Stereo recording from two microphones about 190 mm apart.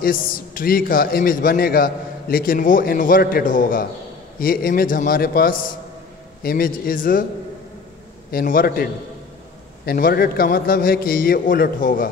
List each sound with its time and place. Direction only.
0.0 s a man's voice: 50° left (ahead or behind)
8.3 s a man's voice: 50° left (ahead or behind)
9.8 s a man's voice: 50° left (ahead or behind)